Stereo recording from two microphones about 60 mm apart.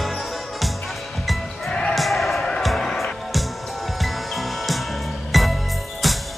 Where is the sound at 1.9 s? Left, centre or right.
Centre.